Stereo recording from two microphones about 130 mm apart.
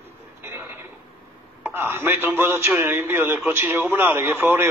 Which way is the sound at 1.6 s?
15° right (ahead or behind).